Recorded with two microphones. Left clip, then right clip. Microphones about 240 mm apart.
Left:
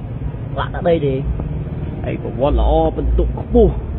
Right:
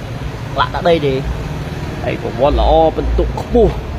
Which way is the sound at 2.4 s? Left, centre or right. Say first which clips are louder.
Right 5 dB; centre.